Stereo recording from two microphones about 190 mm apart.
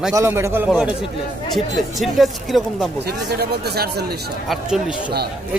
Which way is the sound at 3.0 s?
55° right (ahead or behind).